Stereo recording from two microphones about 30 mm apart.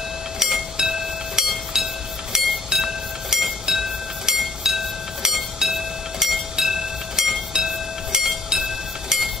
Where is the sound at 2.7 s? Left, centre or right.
Centre.